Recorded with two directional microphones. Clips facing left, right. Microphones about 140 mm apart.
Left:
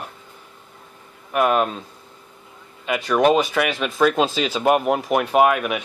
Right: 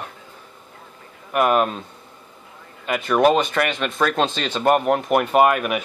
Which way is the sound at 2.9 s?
Centre (ahead or behind).